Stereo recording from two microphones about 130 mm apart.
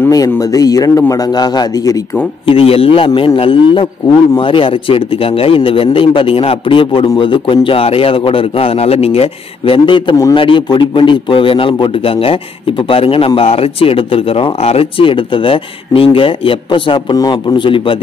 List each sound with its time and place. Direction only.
0.1 s a man's voice: 25° left (ahead or behind)
2.4 s a man's voice: 45° left (ahead or behind)